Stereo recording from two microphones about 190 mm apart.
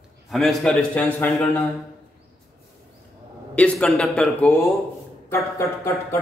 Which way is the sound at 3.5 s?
5° left (ahead or behind).